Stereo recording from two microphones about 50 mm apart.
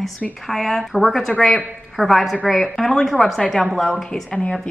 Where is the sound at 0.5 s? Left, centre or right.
Centre.